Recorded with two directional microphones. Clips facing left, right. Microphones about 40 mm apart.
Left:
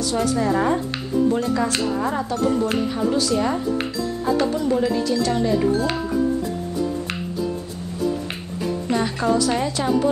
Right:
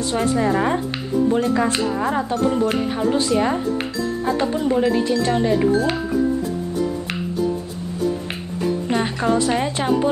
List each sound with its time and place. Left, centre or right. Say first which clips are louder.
0.0 s speech: right 1 dB; right
1.7 s speech: right 2 dB; centre
8.9 s speech: left 1 dB; right